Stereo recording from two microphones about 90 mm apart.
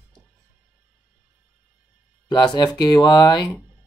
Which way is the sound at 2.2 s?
55° left (ahead or behind).